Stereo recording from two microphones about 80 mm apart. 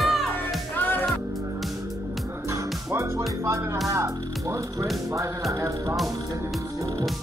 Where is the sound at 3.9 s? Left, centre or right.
Right.